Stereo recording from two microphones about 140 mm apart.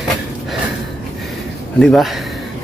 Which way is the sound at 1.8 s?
5° left (ahead or behind).